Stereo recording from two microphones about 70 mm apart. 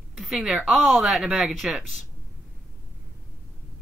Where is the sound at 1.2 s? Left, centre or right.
Centre.